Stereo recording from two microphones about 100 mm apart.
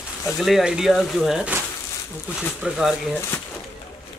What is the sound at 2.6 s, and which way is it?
Speech, centre (ahead or behind).